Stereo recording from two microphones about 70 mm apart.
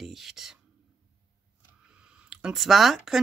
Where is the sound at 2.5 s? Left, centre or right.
Centre.